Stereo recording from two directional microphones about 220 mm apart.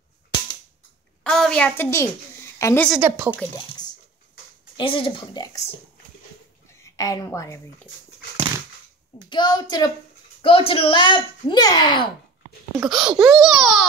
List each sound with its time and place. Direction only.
1.2 s a woman's voice: 5° left (ahead or behind)
2.9 s speech: 10° right (ahead or behind)
4.7 s speech: 25° left (ahead or behind)
6.8 s a woman's voice: 15° left (ahead or behind)
9.3 s speech: 20° left (ahead or behind)
12.7 s speech: 5° right (ahead or behind)